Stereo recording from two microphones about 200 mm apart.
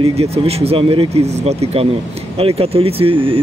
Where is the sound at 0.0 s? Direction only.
30° right (ahead or behind).